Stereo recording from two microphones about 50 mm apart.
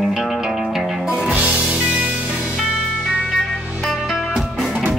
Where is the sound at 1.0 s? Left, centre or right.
Right.